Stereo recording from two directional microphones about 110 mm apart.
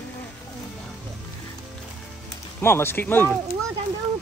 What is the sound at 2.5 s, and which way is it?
Speech, 20° left (ahead or behind).